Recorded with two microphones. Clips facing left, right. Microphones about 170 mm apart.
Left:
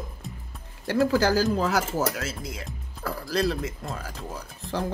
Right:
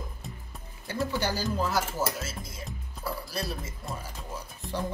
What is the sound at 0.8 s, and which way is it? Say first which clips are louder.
Speech: left 8 dB; 90° left.